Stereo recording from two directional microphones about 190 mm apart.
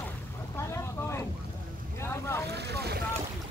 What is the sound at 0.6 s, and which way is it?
Boat, 15° left (ahead or behind).